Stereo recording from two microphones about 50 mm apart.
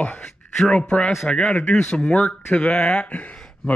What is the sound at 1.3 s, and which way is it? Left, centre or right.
Speech, centre.